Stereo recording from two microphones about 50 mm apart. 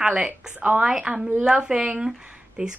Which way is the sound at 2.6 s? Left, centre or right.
Right.